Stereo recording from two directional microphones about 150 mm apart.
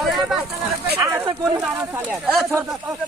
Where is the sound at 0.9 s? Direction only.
20° right (ahead or behind).